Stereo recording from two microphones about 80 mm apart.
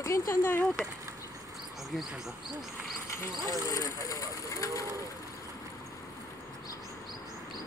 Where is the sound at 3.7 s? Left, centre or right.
Left.